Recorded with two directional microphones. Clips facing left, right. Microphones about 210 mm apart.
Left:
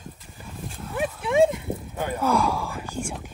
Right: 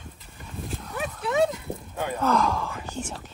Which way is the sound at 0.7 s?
5° left (ahead or behind).